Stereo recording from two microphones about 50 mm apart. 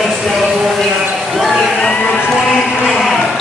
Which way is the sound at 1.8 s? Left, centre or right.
Left.